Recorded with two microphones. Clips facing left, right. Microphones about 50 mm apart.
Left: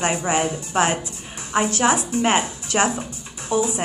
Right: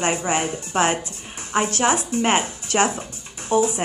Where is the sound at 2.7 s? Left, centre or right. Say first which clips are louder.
Even; left.